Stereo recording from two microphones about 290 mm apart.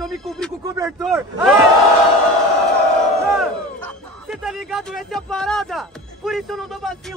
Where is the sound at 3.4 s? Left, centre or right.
Centre.